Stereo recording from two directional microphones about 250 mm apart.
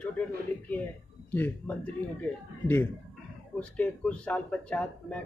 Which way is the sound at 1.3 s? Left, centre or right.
Centre.